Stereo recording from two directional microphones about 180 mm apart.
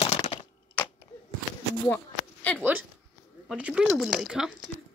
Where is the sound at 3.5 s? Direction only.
5° right (ahead or behind).